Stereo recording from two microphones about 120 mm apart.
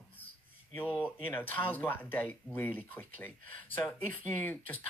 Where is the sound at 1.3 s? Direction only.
15° left (ahead or behind).